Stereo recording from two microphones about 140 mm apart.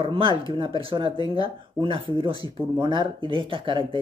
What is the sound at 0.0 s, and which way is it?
Speech, 40° right (ahead or behind).